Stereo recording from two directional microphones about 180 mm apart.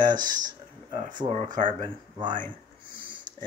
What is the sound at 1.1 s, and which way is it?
Speech, 40° right (ahead or behind).